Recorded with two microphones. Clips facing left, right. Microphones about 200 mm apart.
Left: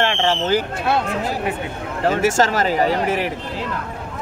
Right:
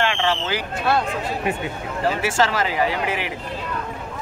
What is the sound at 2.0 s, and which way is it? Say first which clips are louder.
Speech: left 4 dB; 45° left (ahead or behind).